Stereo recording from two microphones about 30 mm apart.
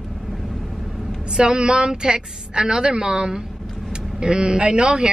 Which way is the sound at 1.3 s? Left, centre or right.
Right.